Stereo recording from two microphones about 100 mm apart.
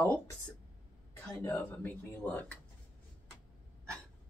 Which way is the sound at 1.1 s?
25° left (ahead or behind).